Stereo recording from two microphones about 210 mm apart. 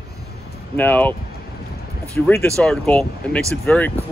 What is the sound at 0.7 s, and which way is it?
Speech, 10° left (ahead or behind).